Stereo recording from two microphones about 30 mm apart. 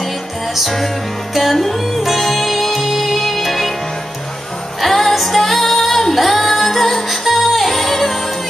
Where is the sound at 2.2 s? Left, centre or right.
Centre.